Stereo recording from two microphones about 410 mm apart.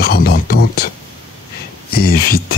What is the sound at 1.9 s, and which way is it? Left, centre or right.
Speech, left.